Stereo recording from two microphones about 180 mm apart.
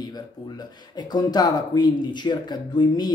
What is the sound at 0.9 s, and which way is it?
Speech, 20° left (ahead or behind).